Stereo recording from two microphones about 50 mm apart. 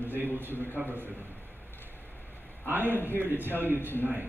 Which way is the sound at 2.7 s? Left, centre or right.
Right.